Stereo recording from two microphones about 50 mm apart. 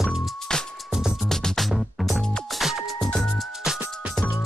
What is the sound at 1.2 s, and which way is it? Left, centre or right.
Music, centre.